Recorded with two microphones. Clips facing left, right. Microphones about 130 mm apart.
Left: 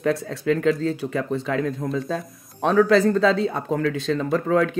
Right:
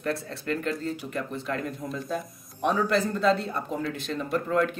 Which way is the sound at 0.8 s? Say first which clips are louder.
Left 7 dB; 90° left.